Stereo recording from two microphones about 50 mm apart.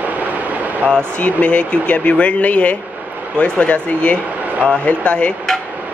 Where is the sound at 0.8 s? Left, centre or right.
Left.